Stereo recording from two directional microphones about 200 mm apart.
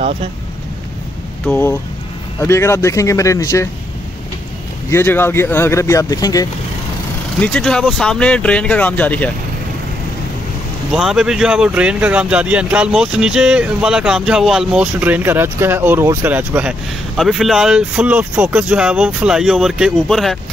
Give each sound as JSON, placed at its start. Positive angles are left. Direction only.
{"t": 1.4, "sound": "speech", "side_deg": 10}
{"t": 4.9, "sound": "speech", "side_deg": 10}
{"t": 7.4, "sound": "speech", "side_deg": 5}
{"t": 10.9, "sound": "speech", "side_deg": 0}